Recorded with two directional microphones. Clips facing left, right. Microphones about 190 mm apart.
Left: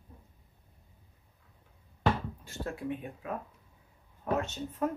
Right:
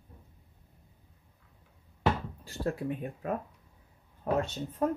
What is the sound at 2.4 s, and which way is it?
Speech, 40° right (ahead or behind).